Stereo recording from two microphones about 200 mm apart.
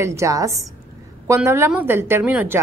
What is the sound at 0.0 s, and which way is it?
A woman's voice, 15° right (ahead or behind).